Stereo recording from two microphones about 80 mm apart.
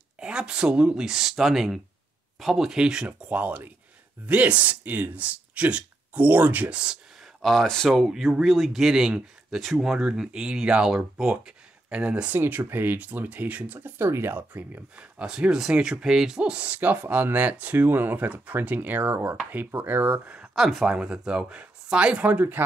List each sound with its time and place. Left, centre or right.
0.2 s speech: centre
7.4 s speech: centre
12.4 s speech: right
15.0 s speech: centre
20.2 s speech: centre